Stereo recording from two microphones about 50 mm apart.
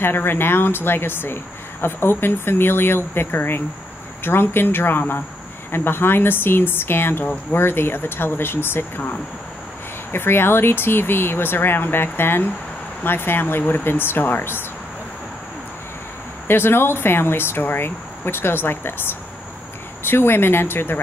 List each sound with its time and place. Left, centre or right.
0.0 s speech: left
10.1 s speech: left
16.4 s speech: left